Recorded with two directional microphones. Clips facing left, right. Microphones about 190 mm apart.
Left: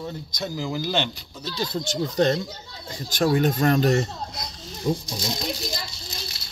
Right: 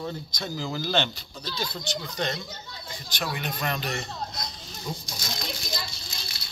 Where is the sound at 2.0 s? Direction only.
40° left (ahead or behind).